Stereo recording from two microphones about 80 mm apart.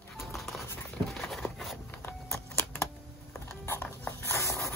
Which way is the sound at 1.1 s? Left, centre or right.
Centre.